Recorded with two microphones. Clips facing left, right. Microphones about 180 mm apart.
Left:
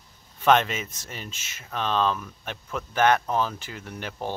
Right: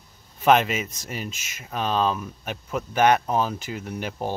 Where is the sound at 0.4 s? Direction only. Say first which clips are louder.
Right 2 dB; 10° right (ahead or behind).